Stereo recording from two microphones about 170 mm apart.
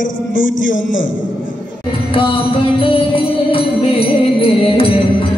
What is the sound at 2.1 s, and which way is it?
Music, 30° left (ahead or behind).